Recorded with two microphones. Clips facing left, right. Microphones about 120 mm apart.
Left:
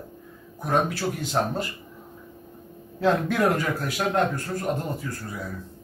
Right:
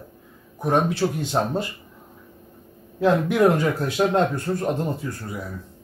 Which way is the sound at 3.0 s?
20° right (ahead or behind).